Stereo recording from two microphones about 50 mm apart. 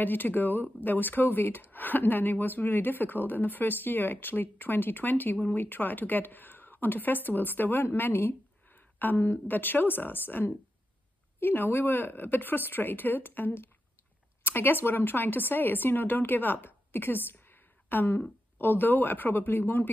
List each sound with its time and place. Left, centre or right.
0.0 s speech: left